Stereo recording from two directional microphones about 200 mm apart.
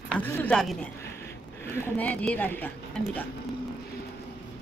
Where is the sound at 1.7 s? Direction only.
10° left (ahead or behind).